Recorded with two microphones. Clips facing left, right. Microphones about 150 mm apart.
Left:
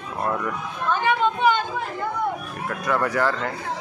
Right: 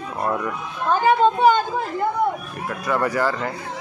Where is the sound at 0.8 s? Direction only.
40° right (ahead or behind).